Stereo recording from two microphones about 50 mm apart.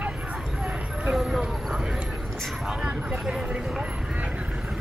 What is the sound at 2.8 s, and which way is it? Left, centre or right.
Speech, centre.